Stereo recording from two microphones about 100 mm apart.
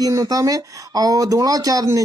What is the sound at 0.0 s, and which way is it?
Speech, 35° right (ahead or behind).